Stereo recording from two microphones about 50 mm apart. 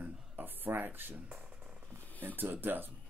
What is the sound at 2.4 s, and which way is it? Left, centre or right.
Speech, right.